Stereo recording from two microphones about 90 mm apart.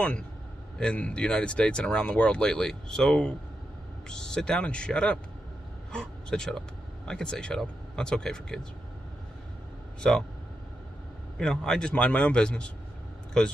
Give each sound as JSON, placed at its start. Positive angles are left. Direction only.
{"t": 0.7, "sound": "speech", "side_deg": 10}
{"t": 10.0, "sound": "speech", "side_deg": 5}
{"t": 11.3, "sound": "speech", "side_deg": 10}